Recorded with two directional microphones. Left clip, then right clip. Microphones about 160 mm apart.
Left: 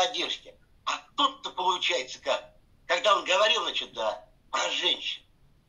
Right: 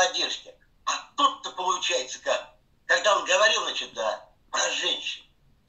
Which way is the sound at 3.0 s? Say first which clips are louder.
Right 1 dB; 30° left (ahead or behind).